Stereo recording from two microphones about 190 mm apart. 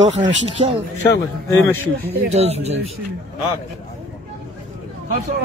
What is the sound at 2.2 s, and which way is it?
Speech, 35° right (ahead or behind).